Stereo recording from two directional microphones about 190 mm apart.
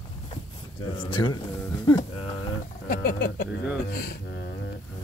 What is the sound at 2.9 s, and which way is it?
Speech, 50° left (ahead or behind).